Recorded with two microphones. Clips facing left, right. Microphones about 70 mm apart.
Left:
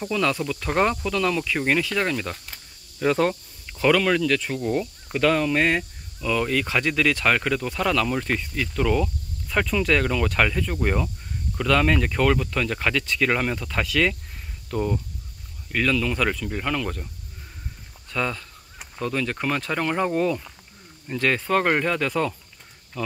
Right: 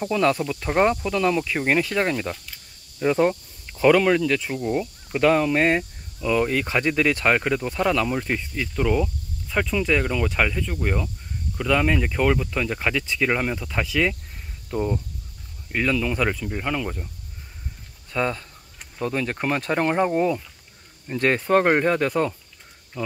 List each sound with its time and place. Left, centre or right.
0.0 s speech: right
0.7 s speech: centre
3.0 s speech: centre
4.6 s speech: centre
5.1 s speech: right
10.7 s speech: centre
11.5 s speech: centre
18.1 s speech: right
21.2 s speech: right